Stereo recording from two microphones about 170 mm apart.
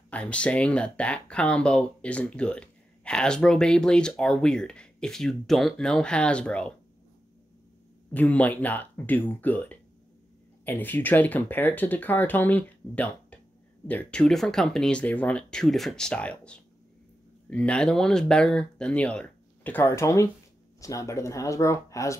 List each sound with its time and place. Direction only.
0.1 s speech: 5° left (ahead or behind)
8.1 s speech: 10° left (ahead or behind)